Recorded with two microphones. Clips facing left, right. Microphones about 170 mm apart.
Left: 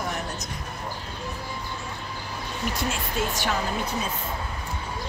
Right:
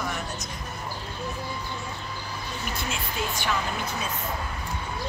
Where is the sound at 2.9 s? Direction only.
45° left (ahead or behind).